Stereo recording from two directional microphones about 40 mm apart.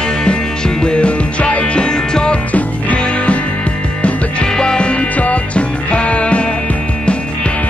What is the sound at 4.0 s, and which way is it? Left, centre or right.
Music, left.